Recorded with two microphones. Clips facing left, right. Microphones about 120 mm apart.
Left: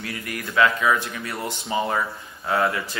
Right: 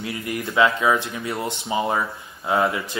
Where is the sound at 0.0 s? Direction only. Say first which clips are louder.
Right 4 dB; 20° right (ahead or behind).